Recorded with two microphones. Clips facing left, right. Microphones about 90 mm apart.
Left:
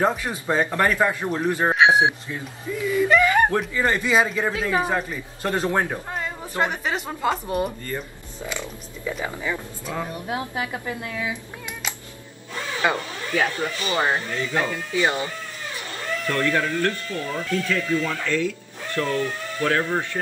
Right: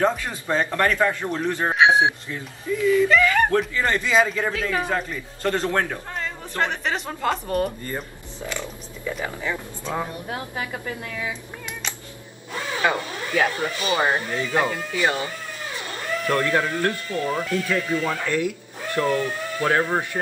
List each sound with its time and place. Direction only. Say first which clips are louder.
0.0 s a man's voice: even; 15° left (ahead or behind)
1.8 s speech: right 1 dB; centre (ahead or behind)
2.7 s a man's voice: right 2 dB; 15° left (ahead or behind)
3.5 s a man's voice: right 1 dB; 10° left (ahead or behind)
10.2 s a woman's voice: left 3 dB; 20° left (ahead or behind)
12.9 s speech: right 1 dB; 15° right (ahead or behind)
15.0 s a man's voice: left 1 dB; 15° left (ahead or behind)
16.3 s speech: right 1 dB; 20° right (ahead or behind)